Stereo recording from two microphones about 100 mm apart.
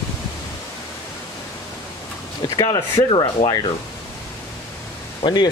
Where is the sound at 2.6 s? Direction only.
35° left (ahead or behind).